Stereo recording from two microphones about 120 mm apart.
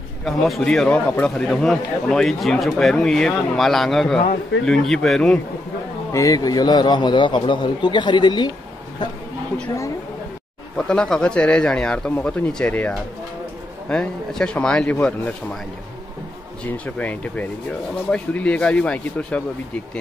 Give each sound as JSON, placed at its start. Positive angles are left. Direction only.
{"t": 0.2, "sound": "speech", "side_deg": 0}
{"t": 6.1, "sound": "a man's voice", "side_deg": 30}
{"t": 10.8, "sound": "speech", "side_deg": 5}
{"t": 16.6, "sound": "speech", "side_deg": 10}